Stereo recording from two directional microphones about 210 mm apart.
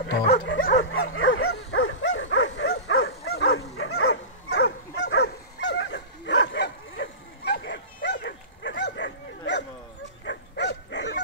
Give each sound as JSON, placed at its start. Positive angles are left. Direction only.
{"t": 0.6, "sound": "dog", "side_deg": 40}
{"t": 0.8, "sound": "dog", "side_deg": 75}
{"t": 3.3, "sound": "dog", "side_deg": 50}
{"t": 3.5, "sound": "bow-wow", "side_deg": 85}
{"t": 4.6, "sound": "dog", "side_deg": 50}